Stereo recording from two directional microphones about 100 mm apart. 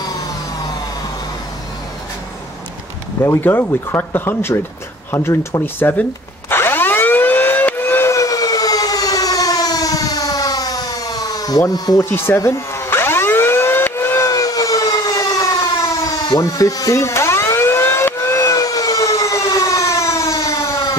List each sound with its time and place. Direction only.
3.3 s speech: 25° left (ahead or behind)
6.5 s siren: 20° left (ahead or behind); by 11.6 s 40° left (ahead or behind)
11.7 s speech: 40° left (ahead or behind)
12.1 s speech: 20° left (ahead or behind)
12.4 s siren: 30° left (ahead or behind)